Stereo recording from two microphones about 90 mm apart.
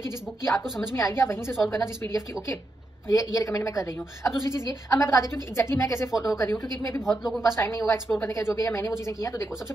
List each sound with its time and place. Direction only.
0.9 s a woman's voice: 35° left (ahead or behind)
7.1 s a woman's voice: 5° right (ahead or behind)
7.5 s a woman's voice: 35° left (ahead or behind)